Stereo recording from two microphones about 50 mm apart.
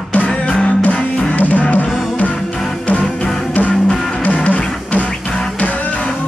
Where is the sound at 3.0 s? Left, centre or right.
Centre.